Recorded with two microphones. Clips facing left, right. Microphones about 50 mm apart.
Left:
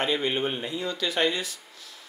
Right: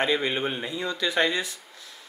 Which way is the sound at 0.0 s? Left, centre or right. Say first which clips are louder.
Right 1 dB; centre.